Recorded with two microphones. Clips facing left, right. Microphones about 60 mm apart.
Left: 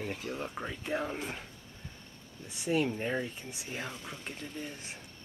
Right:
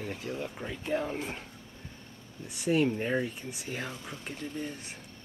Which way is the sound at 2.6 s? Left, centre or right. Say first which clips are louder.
Right 3 dB; centre.